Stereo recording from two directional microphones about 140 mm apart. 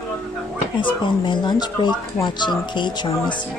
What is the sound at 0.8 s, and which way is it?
Speech, 35° left (ahead or behind).